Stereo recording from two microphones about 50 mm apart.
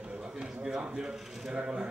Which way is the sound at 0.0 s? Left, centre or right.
Centre.